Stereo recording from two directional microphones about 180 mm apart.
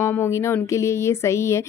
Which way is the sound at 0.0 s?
15° left (ahead or behind).